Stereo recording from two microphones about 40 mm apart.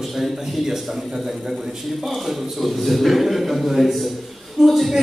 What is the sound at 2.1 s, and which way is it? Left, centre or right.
Speech, centre.